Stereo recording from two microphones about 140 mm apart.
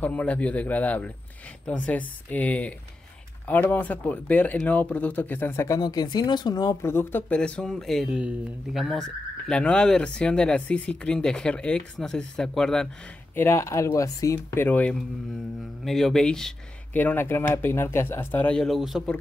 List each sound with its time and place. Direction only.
0.0 s speech: 10° left (ahead or behind)
5.8 s speech: 30° left (ahead or behind); by 12.8 s 5° left (ahead or behind)
13.3 s speech: 15° left (ahead or behind); by 19.0 s 5° right (ahead or behind)